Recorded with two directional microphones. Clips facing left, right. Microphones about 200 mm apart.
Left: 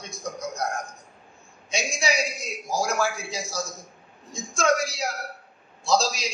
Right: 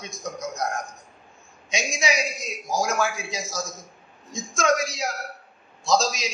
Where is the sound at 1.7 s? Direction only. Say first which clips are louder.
Right 1 dB; 35° left (ahead or behind).